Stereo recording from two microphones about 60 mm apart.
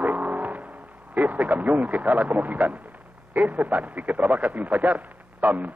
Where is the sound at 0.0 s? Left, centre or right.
Right.